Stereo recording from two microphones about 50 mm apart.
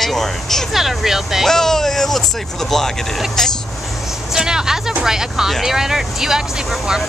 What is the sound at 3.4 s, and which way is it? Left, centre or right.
Speech, centre.